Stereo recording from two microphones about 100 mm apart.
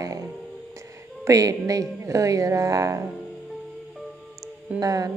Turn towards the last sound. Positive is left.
turn(degrees=-35)  # may be behind; listen again after turning